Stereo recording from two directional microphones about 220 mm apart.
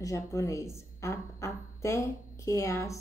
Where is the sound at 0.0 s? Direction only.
15° left (ahead or behind).